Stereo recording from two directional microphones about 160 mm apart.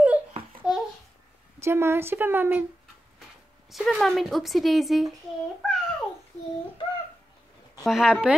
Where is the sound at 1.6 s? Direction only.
15° right (ahead or behind).